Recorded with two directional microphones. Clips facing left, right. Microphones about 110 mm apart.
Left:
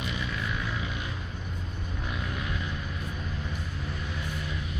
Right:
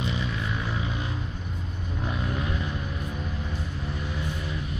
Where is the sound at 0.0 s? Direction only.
30° right (ahead or behind).